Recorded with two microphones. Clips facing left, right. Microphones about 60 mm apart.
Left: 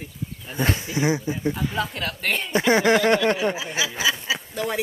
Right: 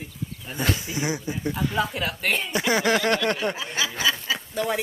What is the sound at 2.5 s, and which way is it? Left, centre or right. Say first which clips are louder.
Speech: left 6 dB; left.